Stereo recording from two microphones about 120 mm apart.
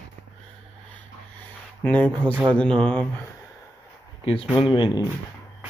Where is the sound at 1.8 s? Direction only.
10° left (ahead or behind).